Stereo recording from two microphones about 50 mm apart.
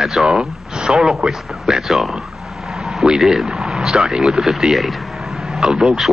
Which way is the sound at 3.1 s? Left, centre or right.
Centre.